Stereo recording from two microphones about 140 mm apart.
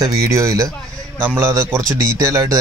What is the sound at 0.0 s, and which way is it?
Speech, 20° right (ahead or behind).